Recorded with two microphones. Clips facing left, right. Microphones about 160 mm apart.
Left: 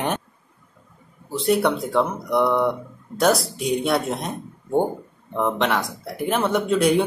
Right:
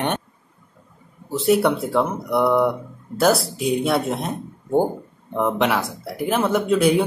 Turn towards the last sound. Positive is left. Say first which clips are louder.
# right 1 dB
turn(degrees=0)  # may be behind; listen again after turning